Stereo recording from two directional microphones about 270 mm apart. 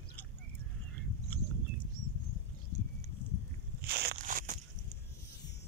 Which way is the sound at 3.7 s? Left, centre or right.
Right.